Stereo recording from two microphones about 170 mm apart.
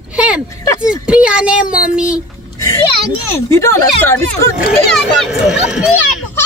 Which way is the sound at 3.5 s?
15° left (ahead or behind).